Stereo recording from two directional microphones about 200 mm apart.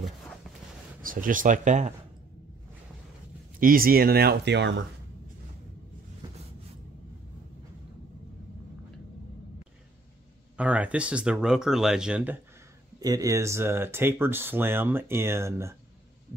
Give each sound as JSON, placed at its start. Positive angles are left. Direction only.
{"t": 1.0, "sound": "speech", "side_deg": -45}
{"t": 3.5, "sound": "speech", "side_deg": -45}
{"t": 10.6, "sound": "speech", "side_deg": -5}
{"t": 13.0, "sound": "speech", "side_deg": -20}